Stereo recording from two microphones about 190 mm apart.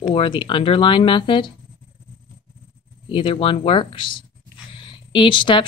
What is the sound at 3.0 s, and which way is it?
Speech, 25° left (ahead or behind).